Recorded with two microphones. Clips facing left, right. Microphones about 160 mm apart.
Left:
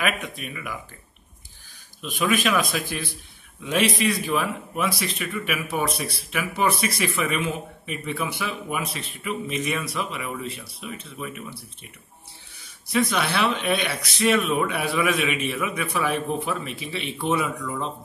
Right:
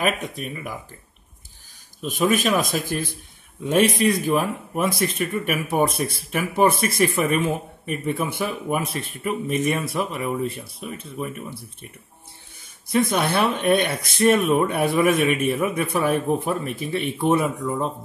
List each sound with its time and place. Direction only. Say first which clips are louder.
0.0 s speech: right 3 dB; 40° right (ahead or behind)
2.0 s speech: right 3 dB; 40° right (ahead or behind)
12.8 s speech: right 3 dB; 50° right (ahead or behind)